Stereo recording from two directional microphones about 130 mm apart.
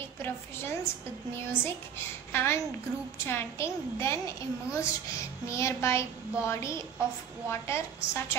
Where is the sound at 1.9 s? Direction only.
20° left (ahead or behind).